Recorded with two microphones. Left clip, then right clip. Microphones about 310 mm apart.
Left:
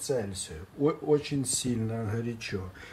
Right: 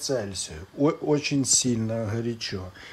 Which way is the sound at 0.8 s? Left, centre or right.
Centre.